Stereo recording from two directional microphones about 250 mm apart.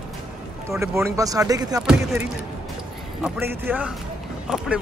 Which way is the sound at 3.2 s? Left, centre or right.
Centre.